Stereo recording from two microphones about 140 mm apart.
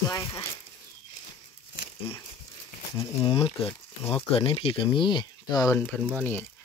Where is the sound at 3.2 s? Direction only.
40° left (ahead or behind).